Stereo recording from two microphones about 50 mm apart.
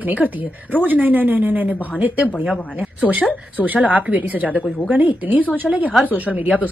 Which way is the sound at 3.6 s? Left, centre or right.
Right.